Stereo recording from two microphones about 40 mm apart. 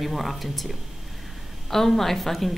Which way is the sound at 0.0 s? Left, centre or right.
Centre.